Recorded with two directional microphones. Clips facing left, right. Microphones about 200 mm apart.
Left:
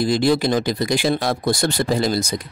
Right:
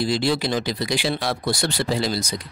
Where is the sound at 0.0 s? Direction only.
50° left (ahead or behind).